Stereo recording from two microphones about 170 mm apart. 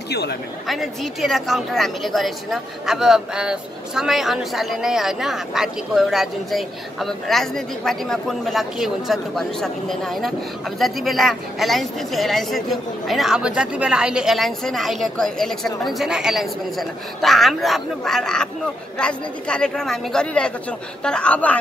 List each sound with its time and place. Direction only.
0.1 s speech: 70° left (ahead or behind)
0.7 s a woman's voice: centre (ahead or behind)